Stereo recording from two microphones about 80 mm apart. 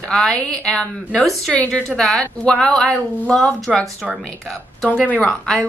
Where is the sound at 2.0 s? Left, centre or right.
Centre.